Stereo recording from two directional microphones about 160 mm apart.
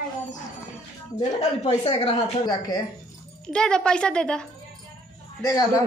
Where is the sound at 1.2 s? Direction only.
40° left (ahead or behind).